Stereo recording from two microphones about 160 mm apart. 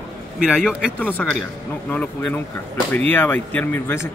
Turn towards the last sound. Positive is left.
turn(degrees=15)  # may be behind; listen again after turning